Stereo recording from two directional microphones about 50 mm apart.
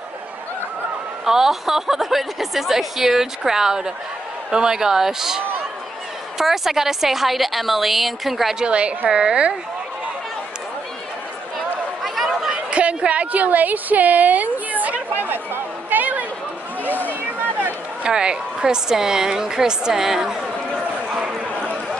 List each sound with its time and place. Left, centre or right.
1.2 s a woman's voice: centre
8.5 s a woman's voice: right
12.0 s chatter: centre
12.7 s a woman's voice: right
16.8 s a sound: left
18.0 s a woman's voice: centre